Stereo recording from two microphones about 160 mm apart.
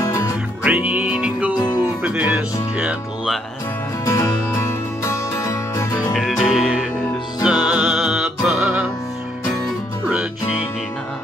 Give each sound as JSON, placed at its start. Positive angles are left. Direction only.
{"t": 0.7, "sound": "music", "side_deg": -10}
{"t": 2.0, "sound": "speech", "side_deg": -5}
{"t": 4.0, "sound": "music", "side_deg": 20}
{"t": 6.1, "sound": "music", "side_deg": 0}